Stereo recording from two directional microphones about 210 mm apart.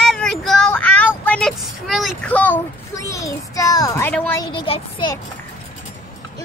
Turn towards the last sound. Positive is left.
turn(degrees=25)  # may be behind; listen again after turning